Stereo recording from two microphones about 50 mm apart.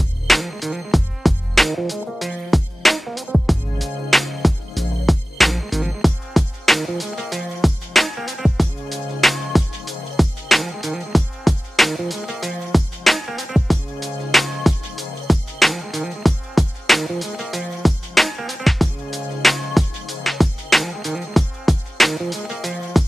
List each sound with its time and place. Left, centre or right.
0.0 s music: centre